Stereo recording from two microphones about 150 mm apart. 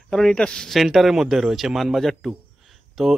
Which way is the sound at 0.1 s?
5° left (ahead or behind).